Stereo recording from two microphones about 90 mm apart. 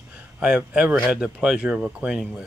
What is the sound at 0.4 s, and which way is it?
Speech, 10° right (ahead or behind).